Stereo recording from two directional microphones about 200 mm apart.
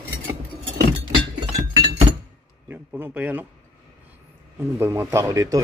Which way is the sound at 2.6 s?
10° right (ahead or behind).